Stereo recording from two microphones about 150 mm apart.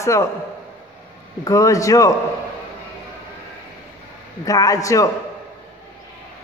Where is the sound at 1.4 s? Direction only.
20° left (ahead or behind).